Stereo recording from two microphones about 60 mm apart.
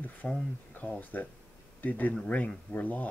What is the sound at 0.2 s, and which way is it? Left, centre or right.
Speech, left.